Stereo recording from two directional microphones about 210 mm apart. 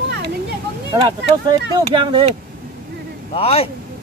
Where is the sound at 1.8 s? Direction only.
25° right (ahead or behind).